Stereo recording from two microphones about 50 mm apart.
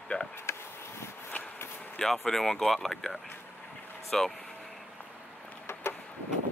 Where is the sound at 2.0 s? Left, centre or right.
Centre.